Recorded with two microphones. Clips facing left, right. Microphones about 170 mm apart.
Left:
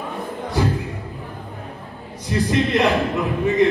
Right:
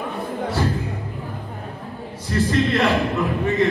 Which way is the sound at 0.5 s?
15° left (ahead or behind).